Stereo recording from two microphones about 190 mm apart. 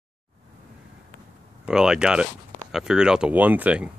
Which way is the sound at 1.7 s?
5° right (ahead or behind).